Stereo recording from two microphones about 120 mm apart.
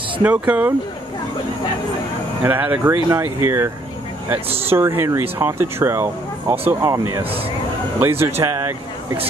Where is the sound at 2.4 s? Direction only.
15° right (ahead or behind).